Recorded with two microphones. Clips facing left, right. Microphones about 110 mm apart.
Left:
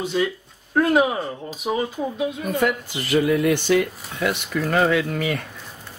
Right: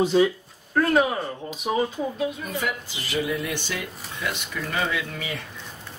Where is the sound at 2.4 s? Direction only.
55° left (ahead or behind).